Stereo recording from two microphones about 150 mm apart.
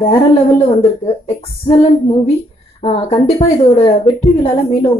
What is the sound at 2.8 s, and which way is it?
A woman's voice, 40° left (ahead or behind).